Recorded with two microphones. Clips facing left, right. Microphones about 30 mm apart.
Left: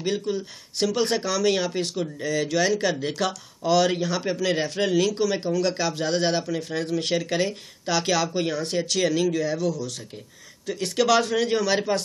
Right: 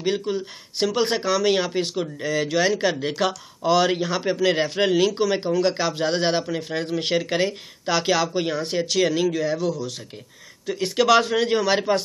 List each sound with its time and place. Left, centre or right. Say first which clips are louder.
0.0 s speech: right 2 dB; centre